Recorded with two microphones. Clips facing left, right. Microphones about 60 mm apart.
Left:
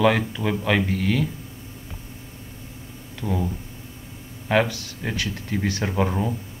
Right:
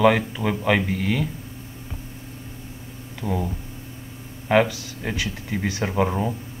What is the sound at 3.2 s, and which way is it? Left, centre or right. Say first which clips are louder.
Speech: even; centre.